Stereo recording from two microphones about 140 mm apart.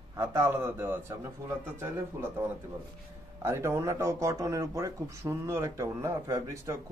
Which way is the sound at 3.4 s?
20° right (ahead or behind).